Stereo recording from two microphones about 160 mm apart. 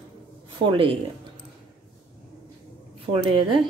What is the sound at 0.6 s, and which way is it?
Speech, 35° right (ahead or behind).